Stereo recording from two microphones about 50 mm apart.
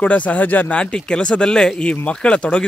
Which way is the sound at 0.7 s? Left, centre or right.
Left.